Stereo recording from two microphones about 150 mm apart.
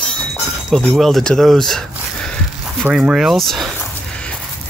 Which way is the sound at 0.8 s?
Centre (ahead or behind).